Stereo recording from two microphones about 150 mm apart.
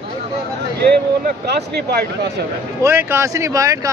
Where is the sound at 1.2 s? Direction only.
90° right.